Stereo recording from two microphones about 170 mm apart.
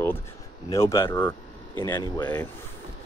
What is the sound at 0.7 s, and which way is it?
Speech, 15° left (ahead or behind).